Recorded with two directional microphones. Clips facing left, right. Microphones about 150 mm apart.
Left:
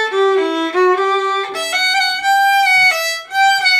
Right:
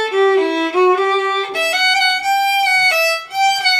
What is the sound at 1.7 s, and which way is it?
Violin, 50° right (ahead or behind).